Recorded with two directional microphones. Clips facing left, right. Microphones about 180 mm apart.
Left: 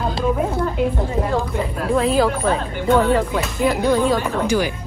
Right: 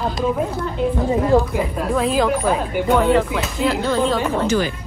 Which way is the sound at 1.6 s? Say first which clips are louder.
Even; centre (ahead or behind).